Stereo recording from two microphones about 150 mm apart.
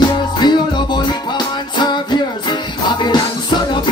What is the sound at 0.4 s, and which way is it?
Music, 30° left (ahead or behind).